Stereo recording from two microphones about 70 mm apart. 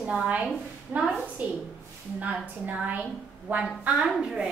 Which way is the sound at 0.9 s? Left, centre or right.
Centre.